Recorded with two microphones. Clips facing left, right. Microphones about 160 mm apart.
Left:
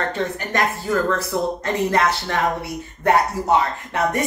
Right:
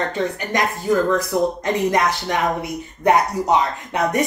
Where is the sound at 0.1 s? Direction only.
15° right (ahead or behind).